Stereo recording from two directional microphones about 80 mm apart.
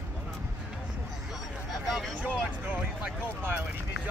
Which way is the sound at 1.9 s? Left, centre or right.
Centre.